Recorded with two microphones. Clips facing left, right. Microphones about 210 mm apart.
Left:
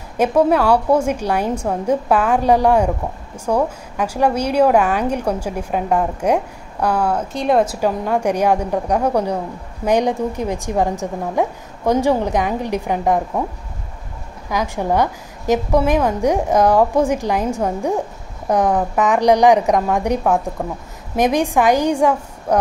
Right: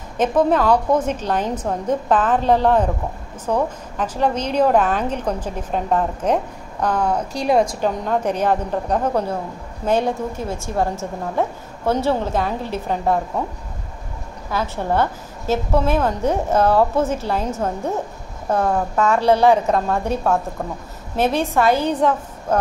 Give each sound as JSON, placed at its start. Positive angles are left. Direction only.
{"t": 0.2, "sound": "a woman's voice", "side_deg": 10}
{"t": 14.5, "sound": "a woman's voice", "side_deg": 15}